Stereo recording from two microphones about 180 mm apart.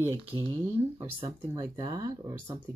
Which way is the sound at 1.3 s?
20° right (ahead or behind).